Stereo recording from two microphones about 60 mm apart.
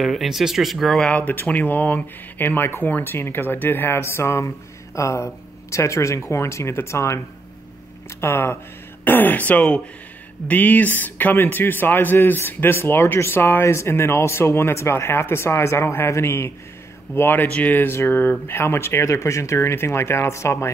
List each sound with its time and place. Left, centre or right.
0.0 s speech: centre
1.1 s speech: left
8.2 s speech: left
9.0 s speech: left
17.5 s speech: left
17.7 s speech: left